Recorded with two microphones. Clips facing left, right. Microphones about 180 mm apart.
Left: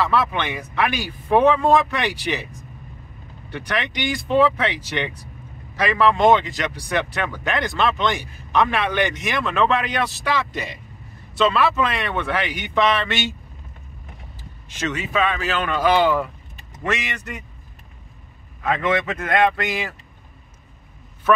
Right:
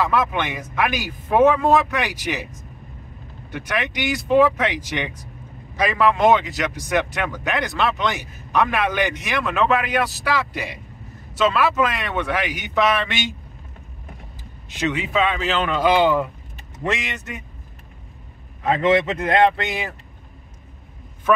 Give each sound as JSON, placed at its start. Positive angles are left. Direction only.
{"t": 0.0, "sound": "speech", "side_deg": -15}
{"t": 3.5, "sound": "speech", "side_deg": -10}
{"t": 9.4, "sound": "speech", "side_deg": -10}
{"t": 14.8, "sound": "speech", "side_deg": -20}
{"t": 18.6, "sound": "speech", "side_deg": -25}